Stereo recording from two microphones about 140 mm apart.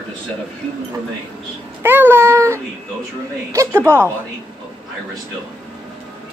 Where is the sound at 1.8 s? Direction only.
15° right (ahead or behind).